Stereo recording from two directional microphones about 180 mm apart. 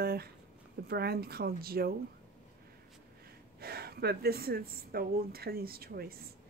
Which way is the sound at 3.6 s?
60° right (ahead or behind).